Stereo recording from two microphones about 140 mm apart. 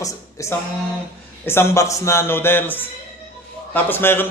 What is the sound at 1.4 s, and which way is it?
A man's voice, 20° left (ahead or behind).